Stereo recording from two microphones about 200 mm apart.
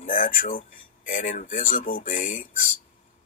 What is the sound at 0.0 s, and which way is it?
Speech, 40° left (ahead or behind).